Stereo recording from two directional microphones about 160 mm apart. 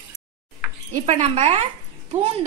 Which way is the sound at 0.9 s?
40° right (ahead or behind).